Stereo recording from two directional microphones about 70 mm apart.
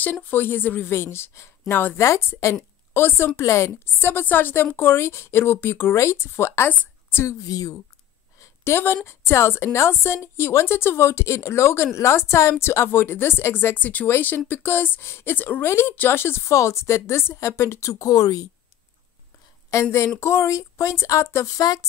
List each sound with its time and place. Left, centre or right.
0.0 s a woman's voice: left
1.7 s speech: left
2.0 s a woman's voice: left
2.9 s a woman's voice: left
6.7 s a sound: left
7.2 s speech: left
8.4 s a woman's voice: left
15.6 s a woman's voice: left
17.9 s speech: left
19.7 s a woman's voice: left
21.5 s speech: left